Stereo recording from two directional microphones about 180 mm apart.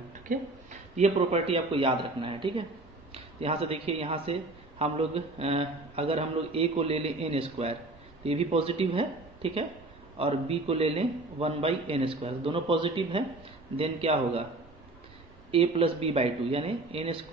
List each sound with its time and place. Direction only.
0.9 s speech: 40° right (ahead or behind)
15.5 s speech: 30° right (ahead or behind)